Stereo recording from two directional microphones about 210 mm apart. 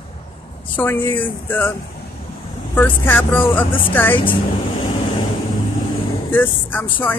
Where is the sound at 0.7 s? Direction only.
10° left (ahead or behind).